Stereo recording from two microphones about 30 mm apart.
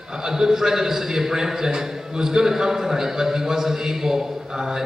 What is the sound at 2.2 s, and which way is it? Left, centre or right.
A man's voice, centre.